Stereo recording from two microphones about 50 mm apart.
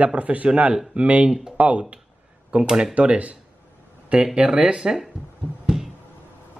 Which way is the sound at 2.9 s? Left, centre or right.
Right.